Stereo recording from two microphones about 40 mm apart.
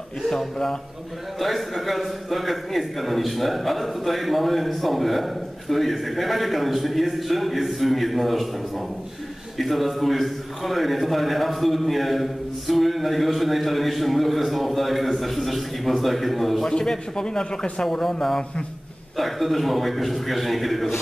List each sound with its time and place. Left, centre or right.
0.3 s a man's voice: centre
1.4 s a man's voice: centre
9.6 s a man's voice: centre
16.6 s a man's voice: centre
17.8 s a man's voice: centre